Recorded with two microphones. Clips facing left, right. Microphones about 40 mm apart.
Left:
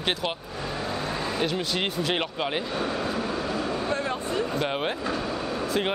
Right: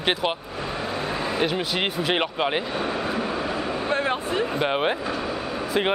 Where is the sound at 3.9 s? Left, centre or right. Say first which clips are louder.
Right 4 dB; right.